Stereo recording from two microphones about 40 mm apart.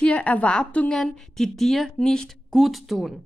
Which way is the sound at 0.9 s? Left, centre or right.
Centre.